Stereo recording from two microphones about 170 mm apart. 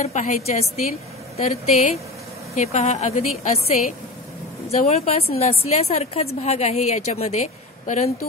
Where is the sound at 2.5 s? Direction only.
40° left (ahead or behind).